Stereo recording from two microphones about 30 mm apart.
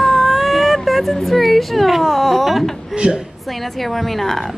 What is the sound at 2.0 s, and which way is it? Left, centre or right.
Speech, centre.